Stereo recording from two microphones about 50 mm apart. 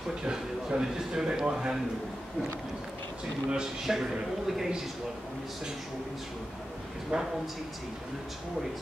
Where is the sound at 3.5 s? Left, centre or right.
Centre.